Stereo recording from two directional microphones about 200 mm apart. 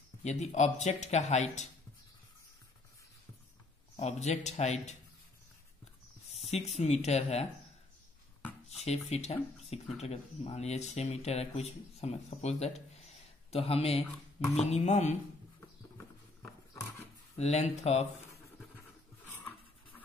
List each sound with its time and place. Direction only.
0.2 s speech: 35° left (ahead or behind)
3.9 s speech: 30° left (ahead or behind)
6.3 s speech: 30° left (ahead or behind)
8.6 s speech: 30° left (ahead or behind)
17.4 s speech: 35° left (ahead or behind)